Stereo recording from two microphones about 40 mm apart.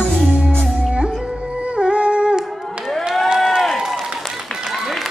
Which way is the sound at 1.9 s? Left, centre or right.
Right.